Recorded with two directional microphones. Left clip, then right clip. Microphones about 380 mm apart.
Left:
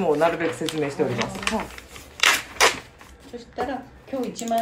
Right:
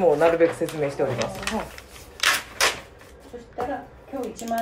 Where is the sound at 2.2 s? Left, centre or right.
Centre.